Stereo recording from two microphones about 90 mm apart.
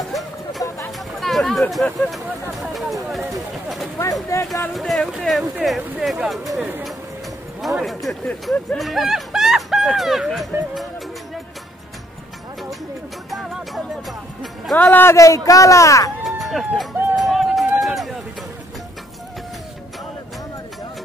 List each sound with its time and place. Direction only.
0.6 s a sound: 40° left (ahead or behind)
1.2 s speech: centre (ahead or behind)
2.6 s a sound: centre (ahead or behind)
4.0 s a man's voice: 35° left (ahead or behind)
4.7 s speech: centre (ahead or behind)
7.6 s speech: centre (ahead or behind)
14.8 s a man's voice: 20° left (ahead or behind)
15.1 s a man's voice: 35° left (ahead or behind)
16.3 s run: centre (ahead or behind)